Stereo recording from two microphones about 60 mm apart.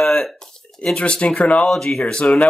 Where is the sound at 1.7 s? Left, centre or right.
Centre.